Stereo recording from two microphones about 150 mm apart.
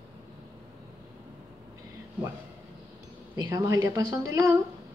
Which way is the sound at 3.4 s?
20° right (ahead or behind).